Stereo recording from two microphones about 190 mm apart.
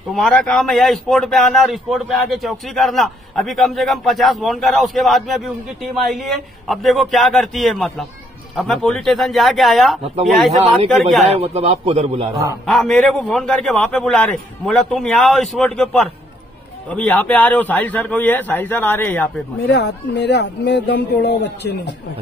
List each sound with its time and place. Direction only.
0.1 s a man's voice: centre (ahead or behind)
11.3 s a man's voice: 30° right (ahead or behind)
12.6 s a man's voice: centre (ahead or behind)
19.7 s speech: 65° left (ahead or behind)